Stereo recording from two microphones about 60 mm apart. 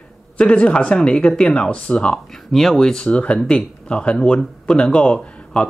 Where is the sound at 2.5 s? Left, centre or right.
Centre.